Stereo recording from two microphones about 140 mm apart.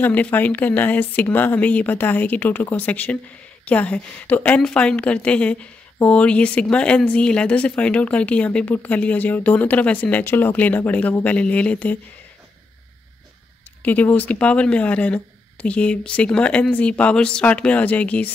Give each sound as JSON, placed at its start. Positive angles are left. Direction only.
{"t": 0.0, "sound": "speech", "side_deg": 10}
{"t": 13.8, "sound": "speech", "side_deg": 10}